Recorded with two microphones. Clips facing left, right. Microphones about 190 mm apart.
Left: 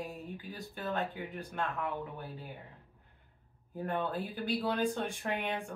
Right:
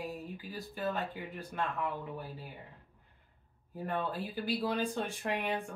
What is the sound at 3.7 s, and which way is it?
Speech, centre (ahead or behind).